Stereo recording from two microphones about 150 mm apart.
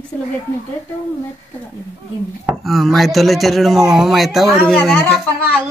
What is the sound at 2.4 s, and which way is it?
A child's voice, centre (ahead or behind).